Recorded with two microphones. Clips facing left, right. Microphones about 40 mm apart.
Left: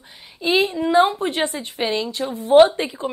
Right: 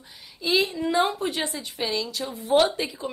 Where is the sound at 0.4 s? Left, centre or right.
Left.